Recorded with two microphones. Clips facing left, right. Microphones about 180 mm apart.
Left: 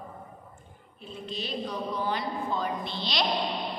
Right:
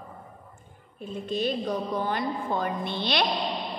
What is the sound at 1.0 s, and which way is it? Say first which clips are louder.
A woman's voice: right 9 dB; 50° right (ahead or behind).